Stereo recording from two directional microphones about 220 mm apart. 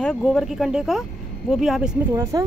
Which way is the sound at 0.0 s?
Centre (ahead or behind).